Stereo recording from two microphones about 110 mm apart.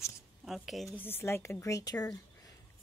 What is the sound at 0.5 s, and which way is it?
Speech, centre (ahead or behind).